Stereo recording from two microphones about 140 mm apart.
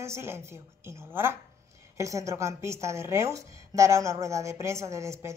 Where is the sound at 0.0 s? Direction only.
20° right (ahead or behind).